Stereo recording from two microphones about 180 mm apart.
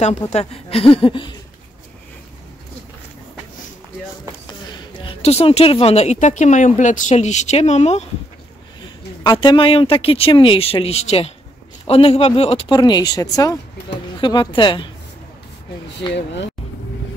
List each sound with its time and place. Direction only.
0.0 s speech: 40° left (ahead or behind)
5.0 s speech: 35° left (ahead or behind)
9.2 s speech: 25° left (ahead or behind)